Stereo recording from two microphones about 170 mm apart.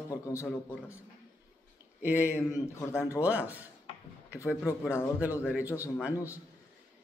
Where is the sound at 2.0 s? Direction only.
10° right (ahead or behind).